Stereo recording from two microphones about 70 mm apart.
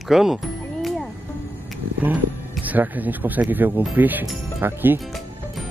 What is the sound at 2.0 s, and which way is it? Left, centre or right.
Speech, right.